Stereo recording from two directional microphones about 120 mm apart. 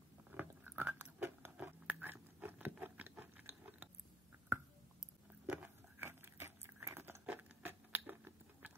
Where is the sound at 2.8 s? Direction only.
15° right (ahead or behind).